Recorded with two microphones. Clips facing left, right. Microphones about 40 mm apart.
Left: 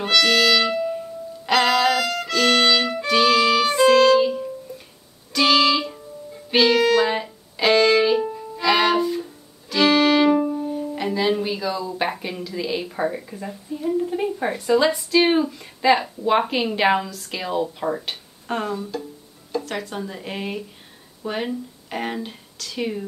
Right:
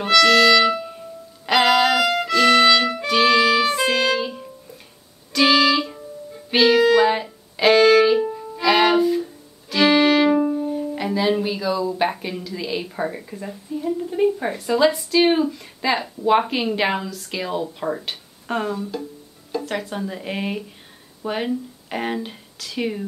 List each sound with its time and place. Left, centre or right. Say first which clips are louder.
0.0 s music: right 4 dB; centre
10.5 s speech: right 2 dB; centre